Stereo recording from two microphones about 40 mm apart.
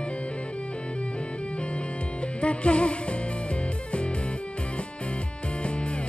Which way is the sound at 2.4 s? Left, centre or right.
Left.